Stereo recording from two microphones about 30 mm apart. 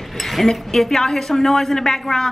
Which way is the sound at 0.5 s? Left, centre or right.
Centre.